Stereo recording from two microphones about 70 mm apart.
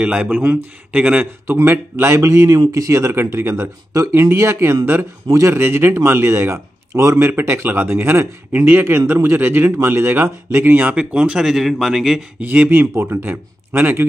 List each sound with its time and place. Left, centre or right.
0.0 s speech: centre
1.2 s speech: right; by 12.3 s centre
12.4 s speech: right
12.6 s speech: right
13.2 s a man's voice: right